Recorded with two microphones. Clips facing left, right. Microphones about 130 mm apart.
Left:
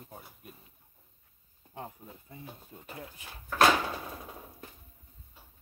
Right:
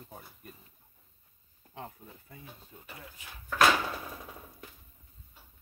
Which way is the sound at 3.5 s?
25° left (ahead or behind).